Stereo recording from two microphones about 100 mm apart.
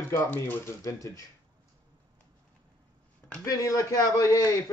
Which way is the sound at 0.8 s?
35° left (ahead or behind).